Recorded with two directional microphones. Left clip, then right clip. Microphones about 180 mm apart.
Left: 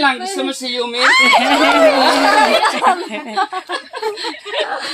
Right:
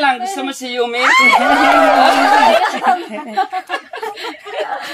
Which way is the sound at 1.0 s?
50° left (ahead or behind).